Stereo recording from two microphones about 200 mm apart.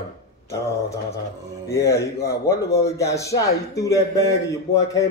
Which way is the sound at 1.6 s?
15° left (ahead or behind).